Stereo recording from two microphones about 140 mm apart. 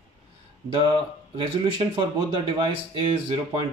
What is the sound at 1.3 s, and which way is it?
Speech, 35° right (ahead or behind).